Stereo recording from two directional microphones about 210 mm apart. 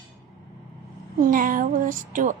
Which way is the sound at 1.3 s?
40° right (ahead or behind).